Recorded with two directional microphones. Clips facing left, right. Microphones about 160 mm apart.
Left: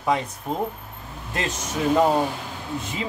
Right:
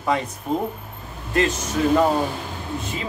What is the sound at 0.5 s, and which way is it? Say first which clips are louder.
Speech: right 5 dB; 5° right (ahead or behind).